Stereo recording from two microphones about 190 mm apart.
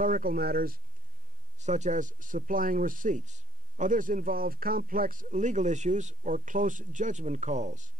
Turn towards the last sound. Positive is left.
turn(degrees=-40)  # may be behind; listen again after turning